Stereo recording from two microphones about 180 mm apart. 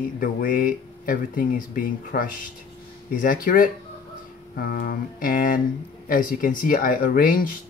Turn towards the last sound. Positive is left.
turn(degrees=50)  # may be behind; listen again after turning